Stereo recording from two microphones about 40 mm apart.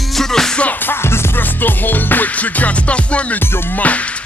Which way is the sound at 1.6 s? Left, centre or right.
Left.